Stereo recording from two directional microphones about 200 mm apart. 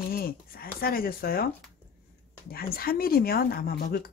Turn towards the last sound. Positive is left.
turn(degrees=50)  # may be behind; listen again after turning